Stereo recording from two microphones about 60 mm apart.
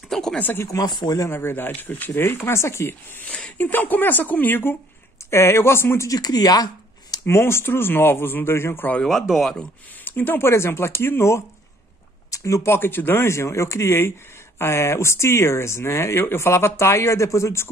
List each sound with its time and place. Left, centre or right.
0.1 s a sound: centre
0.7 s speech: left
1.3 s speech: left
3.3 s speech: left
6.0 s speech: left
7.2 s speech: left
9.3 s speech: centre
10.0 s speech: left
12.3 s a sound: left
12.6 s speech: left